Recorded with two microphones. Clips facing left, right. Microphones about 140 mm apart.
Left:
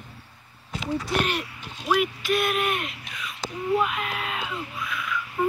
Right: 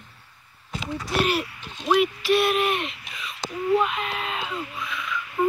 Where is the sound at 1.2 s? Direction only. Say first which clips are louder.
Right 8 dB; 5° right (ahead or behind).